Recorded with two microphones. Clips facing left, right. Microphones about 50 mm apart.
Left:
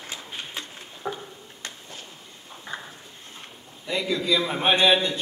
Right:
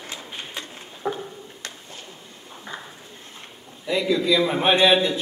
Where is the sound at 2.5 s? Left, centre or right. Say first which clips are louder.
Even; centre.